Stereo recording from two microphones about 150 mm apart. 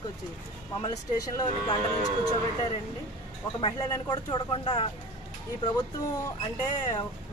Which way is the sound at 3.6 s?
30° left (ahead or behind).